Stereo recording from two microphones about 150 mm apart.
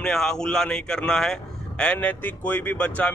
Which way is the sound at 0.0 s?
5° left (ahead or behind).